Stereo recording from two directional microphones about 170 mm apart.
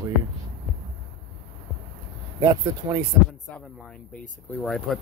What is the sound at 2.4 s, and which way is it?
Speech, 15° right (ahead or behind).